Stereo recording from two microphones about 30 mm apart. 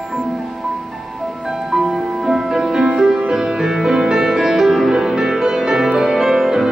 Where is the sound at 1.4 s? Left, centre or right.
Centre.